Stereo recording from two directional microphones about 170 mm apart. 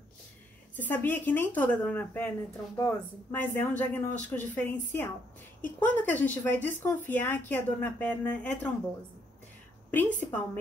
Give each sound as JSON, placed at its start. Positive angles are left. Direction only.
{"t": 0.7, "sound": "speech", "side_deg": 10}
{"t": 9.8, "sound": "speech", "side_deg": 10}